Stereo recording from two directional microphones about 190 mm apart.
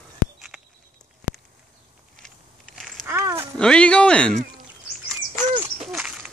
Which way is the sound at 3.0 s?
15° right (ahead or behind).